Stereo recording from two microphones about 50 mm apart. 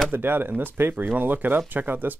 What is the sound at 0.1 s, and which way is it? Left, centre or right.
Speech, right.